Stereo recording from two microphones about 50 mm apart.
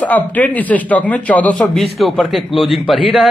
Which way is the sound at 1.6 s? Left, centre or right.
Centre.